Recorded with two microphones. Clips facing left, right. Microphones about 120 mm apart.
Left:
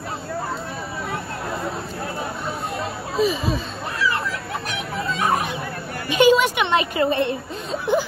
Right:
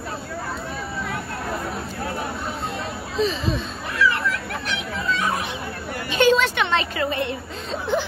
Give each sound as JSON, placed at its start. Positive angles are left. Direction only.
{"t": 3.2, "sound": "speech", "side_deg": 5}
{"t": 4.6, "sound": "fowl", "side_deg": 45}
{"t": 6.0, "sound": "a sound", "side_deg": 10}
{"t": 7.0, "sound": "a woman's voice", "side_deg": 25}